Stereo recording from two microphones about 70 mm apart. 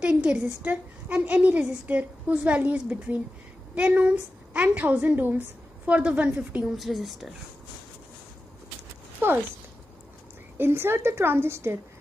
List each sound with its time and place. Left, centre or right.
0.0 s a woman's voice: centre
6.6 s speech: centre
10.6 s a woman's voice: right